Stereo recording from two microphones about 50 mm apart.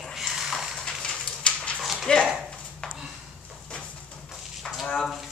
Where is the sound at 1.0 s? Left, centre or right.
Centre.